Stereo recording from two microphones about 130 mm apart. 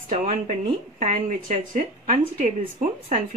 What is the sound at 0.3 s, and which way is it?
Speech, 60° right (ahead or behind).